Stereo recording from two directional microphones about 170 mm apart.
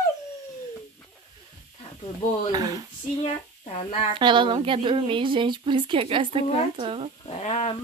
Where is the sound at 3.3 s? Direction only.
35° left (ahead or behind).